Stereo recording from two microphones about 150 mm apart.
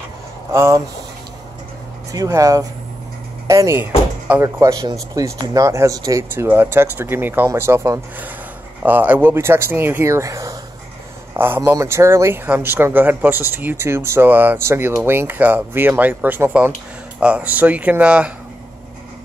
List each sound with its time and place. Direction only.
0.5 s speech: 20° right (ahead or behind)
2.1 s speech: 25° right (ahead or behind); by 18.3 s 10° right (ahead or behind)